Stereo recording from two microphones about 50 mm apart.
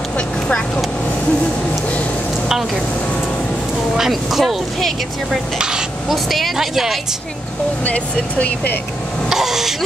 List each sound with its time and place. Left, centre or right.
2.4 s speech: centre
3.9 s speech: centre
5.6 s stir: centre
6.0 s speech: centre
7.8 s speech: left
9.3 s wail: centre